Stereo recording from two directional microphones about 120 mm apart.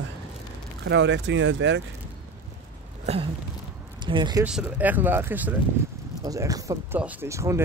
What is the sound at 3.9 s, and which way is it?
Speech, 40° right (ahead or behind).